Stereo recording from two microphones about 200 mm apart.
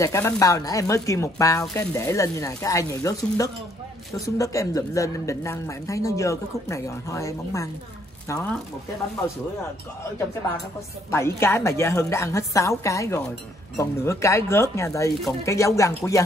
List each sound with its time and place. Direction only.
0.0 s speech: 15° left (ahead or behind)
11.1 s speech: 15° left (ahead or behind)